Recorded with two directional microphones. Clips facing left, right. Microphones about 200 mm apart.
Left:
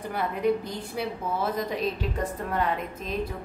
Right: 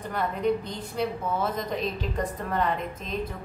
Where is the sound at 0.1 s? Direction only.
10° left (ahead or behind).